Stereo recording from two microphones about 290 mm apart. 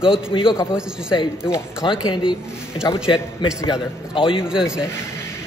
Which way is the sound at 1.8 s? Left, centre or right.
Centre.